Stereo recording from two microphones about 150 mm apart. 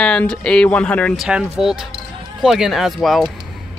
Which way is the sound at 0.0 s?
5° left (ahead or behind).